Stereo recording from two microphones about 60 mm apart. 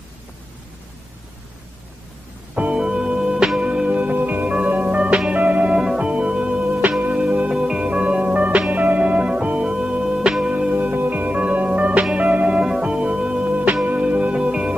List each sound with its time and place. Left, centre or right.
2.5 s music: centre
10.7 s music: right